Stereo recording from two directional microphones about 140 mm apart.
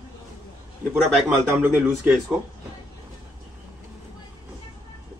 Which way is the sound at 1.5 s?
15° right (ahead or behind).